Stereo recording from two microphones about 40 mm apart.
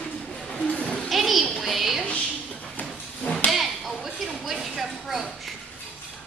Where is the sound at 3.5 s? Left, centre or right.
Centre.